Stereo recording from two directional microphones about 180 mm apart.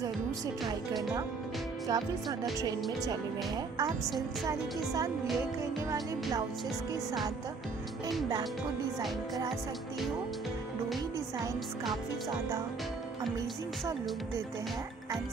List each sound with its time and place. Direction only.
1.9 s a woman's voice: 20° right (ahead or behind)